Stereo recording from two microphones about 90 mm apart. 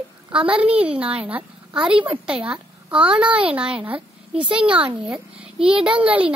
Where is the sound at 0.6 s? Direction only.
15° right (ahead or behind).